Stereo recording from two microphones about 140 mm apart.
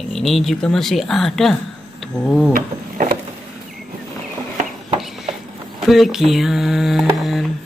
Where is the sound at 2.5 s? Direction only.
90° right.